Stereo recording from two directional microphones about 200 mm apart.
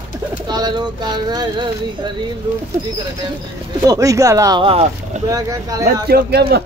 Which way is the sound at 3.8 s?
15° right (ahead or behind).